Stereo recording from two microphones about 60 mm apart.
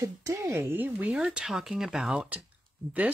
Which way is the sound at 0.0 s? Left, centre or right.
Right.